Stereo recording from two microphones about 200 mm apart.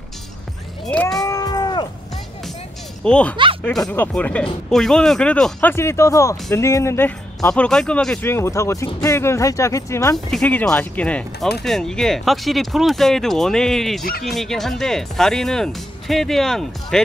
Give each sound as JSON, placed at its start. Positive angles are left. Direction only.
{"t": 0.8, "sound": "cat", "side_deg": 5}
{"t": 3.0, "sound": "speech", "side_deg": 5}
{"t": 10.1, "sound": "speech", "side_deg": 5}